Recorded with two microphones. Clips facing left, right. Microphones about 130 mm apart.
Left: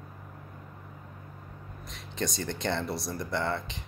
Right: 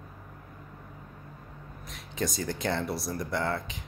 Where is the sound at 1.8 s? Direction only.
Centre (ahead or behind).